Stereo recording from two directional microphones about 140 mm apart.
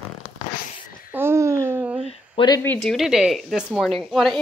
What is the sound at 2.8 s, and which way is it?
A woman's voice, centre (ahead or behind).